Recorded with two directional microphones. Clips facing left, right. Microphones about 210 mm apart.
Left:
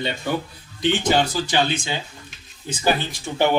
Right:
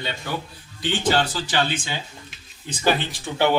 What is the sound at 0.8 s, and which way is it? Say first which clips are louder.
Speech: left 3 dB; 15° left (ahead or behind).